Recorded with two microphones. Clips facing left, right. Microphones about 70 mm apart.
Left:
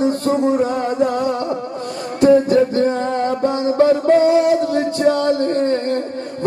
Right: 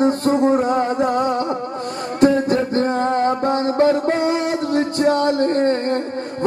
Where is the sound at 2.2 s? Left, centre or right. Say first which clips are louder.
Left 4 dB; right.